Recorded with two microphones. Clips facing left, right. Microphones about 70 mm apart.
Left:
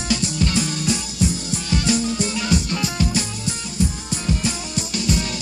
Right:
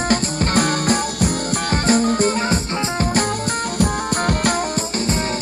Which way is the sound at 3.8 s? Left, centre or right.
Right.